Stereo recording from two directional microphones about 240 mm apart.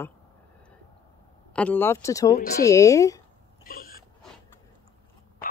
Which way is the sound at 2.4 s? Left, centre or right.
Left.